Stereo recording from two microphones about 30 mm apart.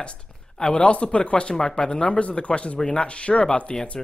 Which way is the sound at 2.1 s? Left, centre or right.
Left.